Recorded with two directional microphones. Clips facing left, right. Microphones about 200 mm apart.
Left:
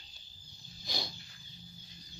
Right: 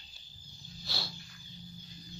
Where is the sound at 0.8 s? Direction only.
15° left (ahead or behind).